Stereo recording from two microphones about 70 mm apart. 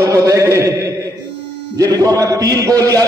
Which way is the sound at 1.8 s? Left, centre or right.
Right.